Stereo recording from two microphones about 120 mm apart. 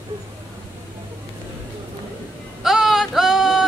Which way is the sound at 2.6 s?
5° right (ahead or behind).